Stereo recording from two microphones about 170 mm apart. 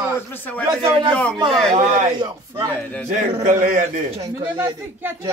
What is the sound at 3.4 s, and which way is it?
Speech, 50° right (ahead or behind).